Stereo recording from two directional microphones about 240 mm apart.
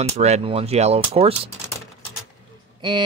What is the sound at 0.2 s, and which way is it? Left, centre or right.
Speech, right.